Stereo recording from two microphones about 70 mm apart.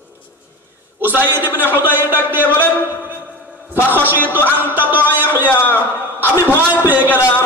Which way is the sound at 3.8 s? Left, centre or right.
Right.